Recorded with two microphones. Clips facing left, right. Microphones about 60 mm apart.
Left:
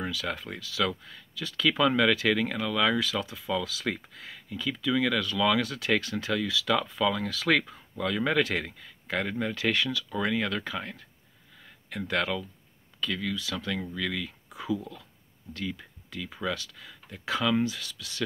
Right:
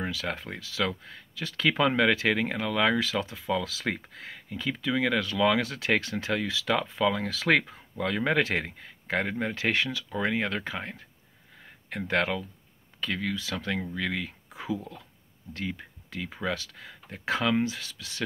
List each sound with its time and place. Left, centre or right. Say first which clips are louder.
0.0 s speech: even; right
11.6 s a sound: right 1 dB; right
13.0 s speech: even; right